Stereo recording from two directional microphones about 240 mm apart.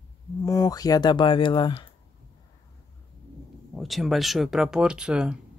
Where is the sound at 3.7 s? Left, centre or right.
Centre.